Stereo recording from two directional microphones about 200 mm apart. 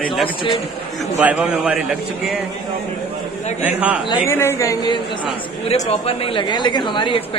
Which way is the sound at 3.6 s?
5° right (ahead or behind).